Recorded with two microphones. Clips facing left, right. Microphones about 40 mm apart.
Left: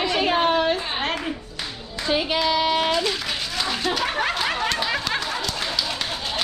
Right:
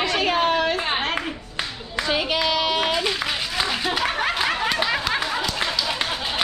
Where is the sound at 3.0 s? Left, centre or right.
Centre.